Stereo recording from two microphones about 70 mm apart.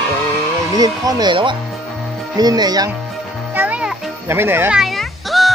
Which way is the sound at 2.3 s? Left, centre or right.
Right.